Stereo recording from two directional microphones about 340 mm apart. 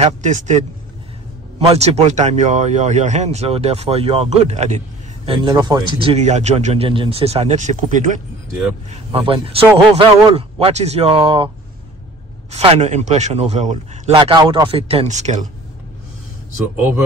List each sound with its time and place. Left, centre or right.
0.0 s speech: right
1.7 s a man's voice: centre